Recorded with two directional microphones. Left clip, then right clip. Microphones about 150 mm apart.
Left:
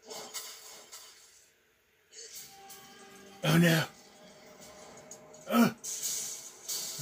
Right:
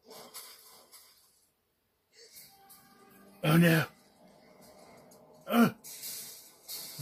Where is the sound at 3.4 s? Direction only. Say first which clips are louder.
Right 1 dB; 90° right.